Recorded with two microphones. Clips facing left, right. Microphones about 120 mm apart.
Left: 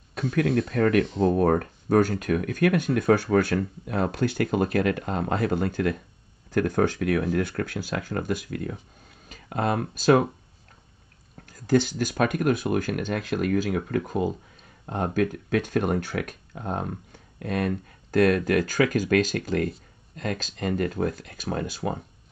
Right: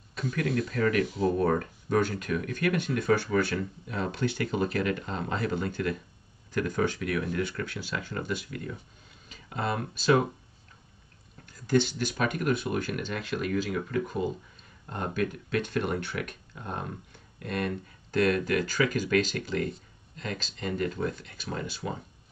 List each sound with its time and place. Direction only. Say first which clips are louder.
0.1 s speech: left 6 dB; 50° left (ahead or behind)
11.4 s speech: left 3 dB; 45° left (ahead or behind)